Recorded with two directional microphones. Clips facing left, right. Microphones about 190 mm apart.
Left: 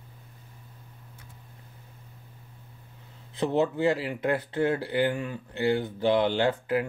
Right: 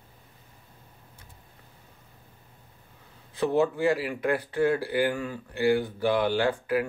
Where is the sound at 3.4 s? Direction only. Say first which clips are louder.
Right 1 dB; 20° left (ahead or behind).